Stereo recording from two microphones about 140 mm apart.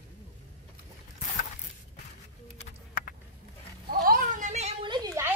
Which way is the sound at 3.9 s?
85° right.